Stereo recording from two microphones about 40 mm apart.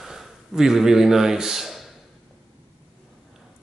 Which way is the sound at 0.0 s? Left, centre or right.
Centre.